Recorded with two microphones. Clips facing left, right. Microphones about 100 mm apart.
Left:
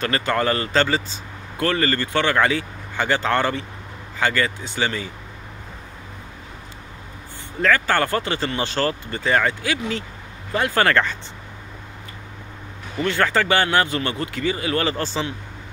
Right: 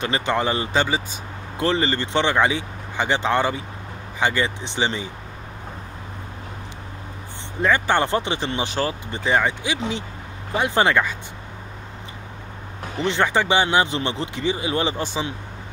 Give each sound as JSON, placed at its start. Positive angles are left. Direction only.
{"t": 0.0, "sound": "a man's voice", "side_deg": -15}
{"t": 7.6, "sound": "speech", "side_deg": -20}
{"t": 13.0, "sound": "a man's voice", "side_deg": -20}